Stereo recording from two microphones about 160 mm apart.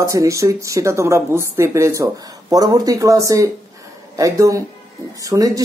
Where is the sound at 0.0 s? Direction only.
20° right (ahead or behind).